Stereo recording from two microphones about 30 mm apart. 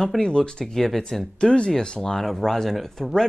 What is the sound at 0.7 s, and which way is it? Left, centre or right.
Speech, centre.